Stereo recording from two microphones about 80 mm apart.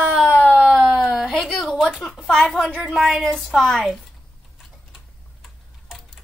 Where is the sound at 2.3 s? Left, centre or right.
Centre.